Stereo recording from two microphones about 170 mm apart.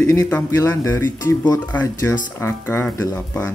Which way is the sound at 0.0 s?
15° left (ahead or behind).